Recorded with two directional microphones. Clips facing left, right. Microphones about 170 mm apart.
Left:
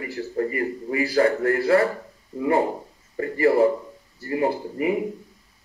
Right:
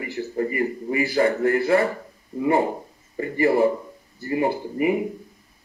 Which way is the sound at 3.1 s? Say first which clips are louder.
Left 1 dB; 20° right (ahead or behind).